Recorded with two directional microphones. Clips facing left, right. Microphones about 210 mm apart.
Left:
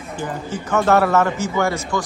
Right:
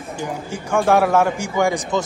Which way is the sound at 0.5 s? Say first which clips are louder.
Even; 10° right (ahead or behind).